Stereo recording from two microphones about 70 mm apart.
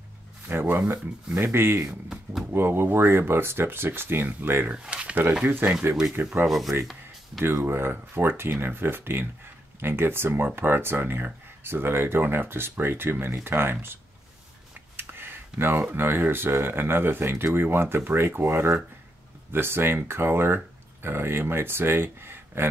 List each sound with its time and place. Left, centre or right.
0.5 s speech: right
1.9 s speech: centre
2.5 s speech: right
4.7 s speech: centre; by 13.9 s right
15.0 s a sound: right
15.6 s speech: right